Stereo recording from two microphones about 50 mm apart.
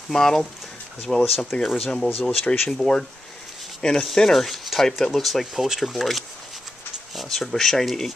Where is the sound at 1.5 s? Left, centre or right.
Left.